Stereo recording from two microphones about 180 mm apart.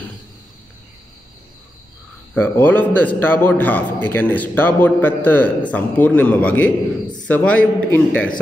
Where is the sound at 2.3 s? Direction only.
10° left (ahead or behind).